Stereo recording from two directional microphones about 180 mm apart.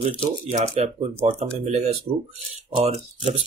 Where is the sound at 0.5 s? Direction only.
35° right (ahead or behind).